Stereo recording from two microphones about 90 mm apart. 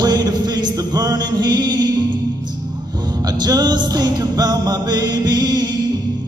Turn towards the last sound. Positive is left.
turn(degrees=-55)  # may be behind; listen again after turning